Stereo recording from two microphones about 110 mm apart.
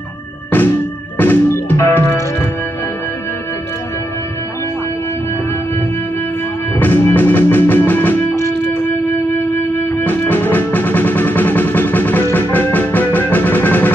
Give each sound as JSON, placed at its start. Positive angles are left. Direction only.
{"t": 1.1, "sound": "music", "side_deg": 15}
{"t": 6.8, "sound": "music", "side_deg": 20}
{"t": 10.0, "sound": "music", "side_deg": 20}